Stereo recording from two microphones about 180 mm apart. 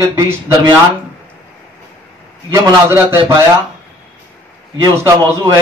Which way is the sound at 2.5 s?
15° right (ahead or behind).